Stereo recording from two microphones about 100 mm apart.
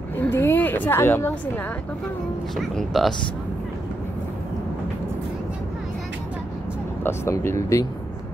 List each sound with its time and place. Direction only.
0.2 s a woman's voice: 25° left (ahead or behind)
2.5 s speech: 5° left (ahead or behind)
7.0 s speech: 25° left (ahead or behind)